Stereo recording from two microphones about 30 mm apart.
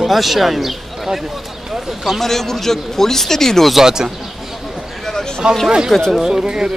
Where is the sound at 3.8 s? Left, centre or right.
Centre.